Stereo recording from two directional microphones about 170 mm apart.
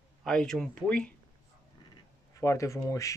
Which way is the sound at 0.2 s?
5° left (ahead or behind).